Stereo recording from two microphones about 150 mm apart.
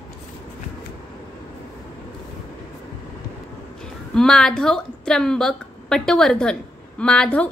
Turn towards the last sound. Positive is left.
turn(degrees=5)  # may be behind; listen again after turning